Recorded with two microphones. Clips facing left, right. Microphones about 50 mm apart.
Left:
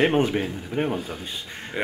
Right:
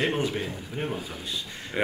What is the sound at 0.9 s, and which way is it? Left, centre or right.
Speech, centre.